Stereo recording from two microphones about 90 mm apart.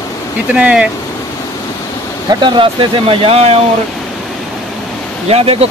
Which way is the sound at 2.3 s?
60° right (ahead or behind).